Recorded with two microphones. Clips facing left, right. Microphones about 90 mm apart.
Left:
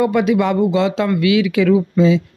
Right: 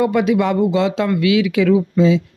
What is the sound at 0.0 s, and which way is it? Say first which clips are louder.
Speech: left 1 dB; 50° left (ahead or behind).